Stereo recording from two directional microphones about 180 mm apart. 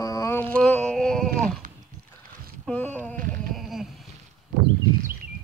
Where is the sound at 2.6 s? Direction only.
10° left (ahead or behind).